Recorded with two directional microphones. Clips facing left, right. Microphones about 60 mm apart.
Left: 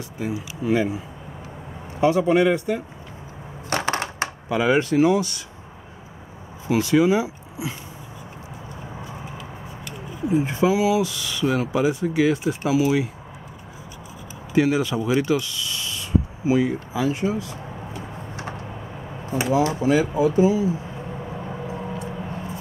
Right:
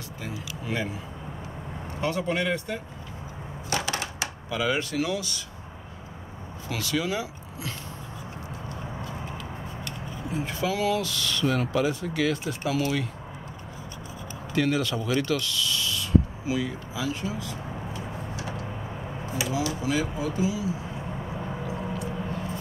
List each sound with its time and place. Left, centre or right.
0.2 s speech: centre
3.7 s a sound: left
6.7 s speech: left
10.3 s speech: left
14.5 s speech: centre
19.3 s speech: left
21.9 s a sound: left